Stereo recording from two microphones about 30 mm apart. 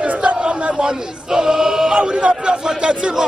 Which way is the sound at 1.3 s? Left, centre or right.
Centre.